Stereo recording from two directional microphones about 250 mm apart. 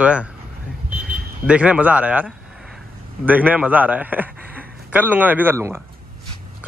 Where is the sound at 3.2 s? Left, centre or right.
Centre.